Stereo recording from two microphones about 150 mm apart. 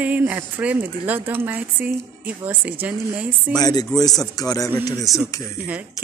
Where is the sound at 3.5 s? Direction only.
25° left (ahead or behind).